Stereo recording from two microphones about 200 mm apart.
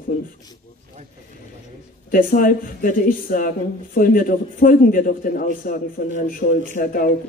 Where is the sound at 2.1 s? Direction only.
45° left (ahead or behind).